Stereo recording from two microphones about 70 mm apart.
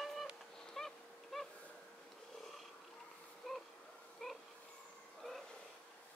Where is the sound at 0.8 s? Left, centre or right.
Centre.